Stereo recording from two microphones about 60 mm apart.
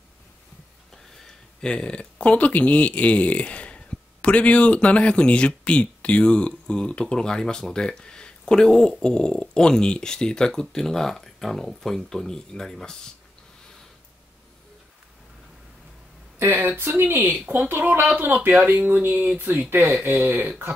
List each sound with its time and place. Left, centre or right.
0.9 s speech: centre
16.3 s speech: right